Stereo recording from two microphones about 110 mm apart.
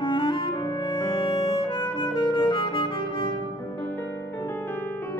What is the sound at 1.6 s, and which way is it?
Music, 45° left (ahead or behind).